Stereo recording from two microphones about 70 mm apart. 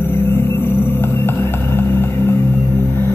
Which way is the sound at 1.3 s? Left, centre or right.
Left.